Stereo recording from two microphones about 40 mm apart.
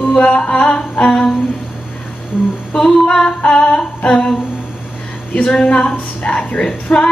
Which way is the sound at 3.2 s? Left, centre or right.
Left.